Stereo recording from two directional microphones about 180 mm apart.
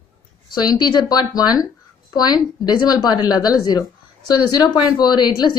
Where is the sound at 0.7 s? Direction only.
20° left (ahead or behind).